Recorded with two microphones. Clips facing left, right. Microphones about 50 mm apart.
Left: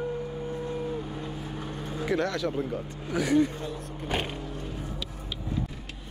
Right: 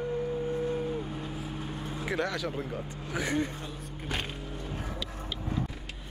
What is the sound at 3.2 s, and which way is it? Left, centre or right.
Speech, right.